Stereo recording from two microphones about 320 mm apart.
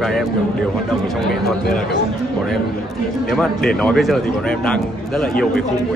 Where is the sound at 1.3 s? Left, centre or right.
Centre.